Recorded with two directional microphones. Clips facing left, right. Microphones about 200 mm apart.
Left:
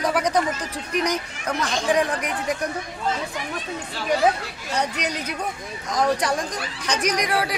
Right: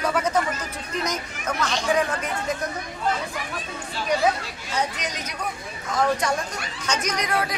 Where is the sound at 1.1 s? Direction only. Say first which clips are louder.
Left 2 dB; 35° left (ahead or behind).